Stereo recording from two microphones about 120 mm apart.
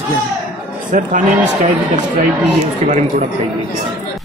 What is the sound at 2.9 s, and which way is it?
Speech, 90° right.